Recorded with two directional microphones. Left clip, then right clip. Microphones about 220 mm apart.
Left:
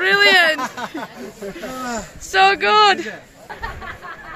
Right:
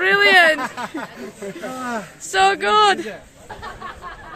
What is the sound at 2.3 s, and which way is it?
Speech, centre (ahead or behind).